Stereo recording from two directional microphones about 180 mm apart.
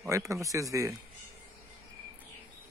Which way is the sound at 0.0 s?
15° right (ahead or behind).